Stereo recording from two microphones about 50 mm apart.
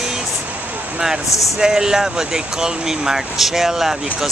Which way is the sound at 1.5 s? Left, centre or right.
Centre.